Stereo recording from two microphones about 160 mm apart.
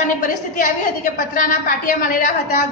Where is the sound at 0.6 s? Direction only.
55° left (ahead or behind).